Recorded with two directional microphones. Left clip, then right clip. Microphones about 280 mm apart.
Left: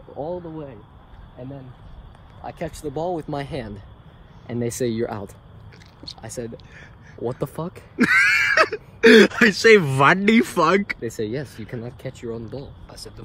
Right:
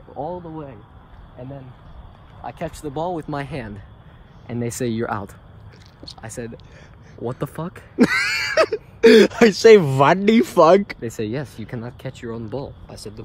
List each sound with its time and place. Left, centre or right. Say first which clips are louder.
0.3 s speech: even; centre
2.4 s speech: right 1 dB; centre
12.6 s speech: right 5 dB; right